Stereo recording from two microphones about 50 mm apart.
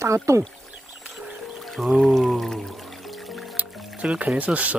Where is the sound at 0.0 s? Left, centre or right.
Right.